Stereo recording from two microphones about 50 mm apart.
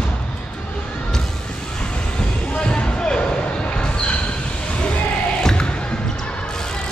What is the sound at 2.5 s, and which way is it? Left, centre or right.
Music, centre.